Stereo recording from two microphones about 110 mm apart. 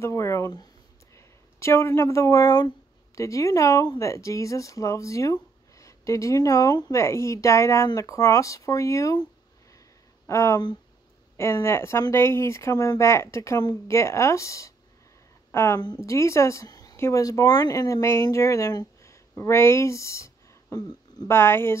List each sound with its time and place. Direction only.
0.0 s a woman's voice: 25° left (ahead or behind)
15.8 s speech: 40° left (ahead or behind)
16.1 s speech: 25° left (ahead or behind)
21.3 s speech: 20° left (ahead or behind)